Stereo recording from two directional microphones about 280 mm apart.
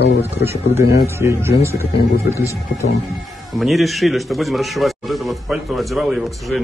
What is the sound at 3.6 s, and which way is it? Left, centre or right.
A man's voice, centre.